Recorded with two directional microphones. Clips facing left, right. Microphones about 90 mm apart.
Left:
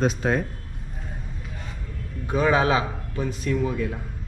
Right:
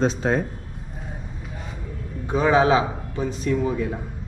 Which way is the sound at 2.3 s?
15° right (ahead or behind).